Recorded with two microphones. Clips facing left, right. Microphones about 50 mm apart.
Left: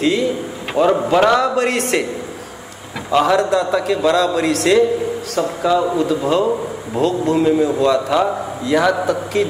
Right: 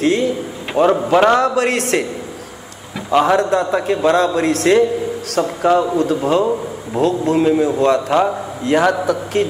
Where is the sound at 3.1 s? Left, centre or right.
Right.